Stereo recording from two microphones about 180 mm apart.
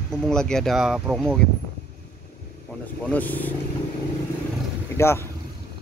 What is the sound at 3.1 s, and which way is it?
Speech, 10° left (ahead or behind).